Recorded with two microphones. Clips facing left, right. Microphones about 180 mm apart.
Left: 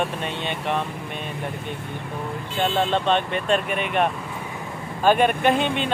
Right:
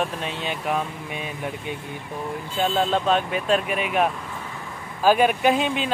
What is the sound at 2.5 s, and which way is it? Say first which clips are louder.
Speech: even; 5° right (ahead or behind).